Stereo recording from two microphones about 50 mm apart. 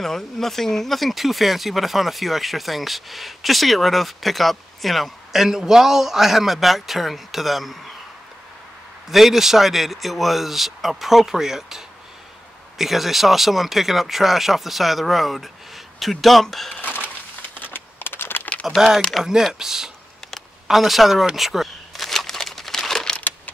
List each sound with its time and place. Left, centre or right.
0.0 s speech: centre
9.1 s speech: centre
17.7 s typing: left
18.5 s typing: left
19.2 s speech: centre
21.4 s crumpling: centre